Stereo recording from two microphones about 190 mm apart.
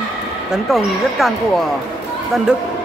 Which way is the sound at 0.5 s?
Centre (ahead or behind).